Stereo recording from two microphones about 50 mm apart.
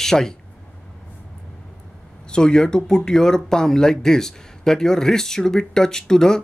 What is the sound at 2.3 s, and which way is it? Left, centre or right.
Speech, centre.